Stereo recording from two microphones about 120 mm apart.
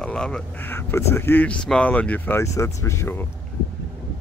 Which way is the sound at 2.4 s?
25° left (ahead or behind).